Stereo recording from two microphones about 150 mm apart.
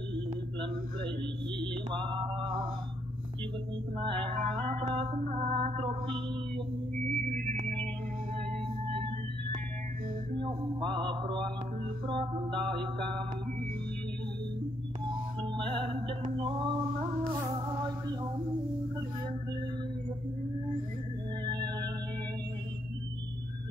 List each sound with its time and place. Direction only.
4.4 s music: 50° right (ahead or behind)
7.1 s music: 55° right (ahead or behind)
10.4 s mantra: 35° right (ahead or behind)
15.4 s music: 35° right (ahead or behind)
21.5 s music: 30° right (ahead or behind)